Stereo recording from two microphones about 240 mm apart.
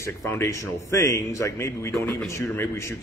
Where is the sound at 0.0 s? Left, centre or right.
Centre.